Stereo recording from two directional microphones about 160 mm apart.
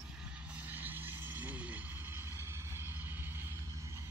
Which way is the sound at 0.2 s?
10° right (ahead or behind).